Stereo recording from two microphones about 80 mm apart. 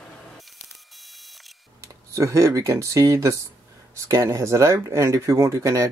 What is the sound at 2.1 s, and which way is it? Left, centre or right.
Speech, right.